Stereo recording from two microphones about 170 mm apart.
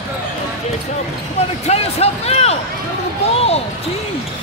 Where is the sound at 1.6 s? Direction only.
40° left (ahead or behind).